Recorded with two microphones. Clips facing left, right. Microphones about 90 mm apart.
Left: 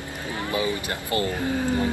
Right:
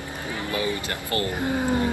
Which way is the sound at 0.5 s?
20° left (ahead or behind).